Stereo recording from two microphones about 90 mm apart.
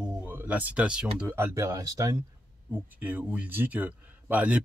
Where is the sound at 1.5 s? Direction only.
35° right (ahead or behind).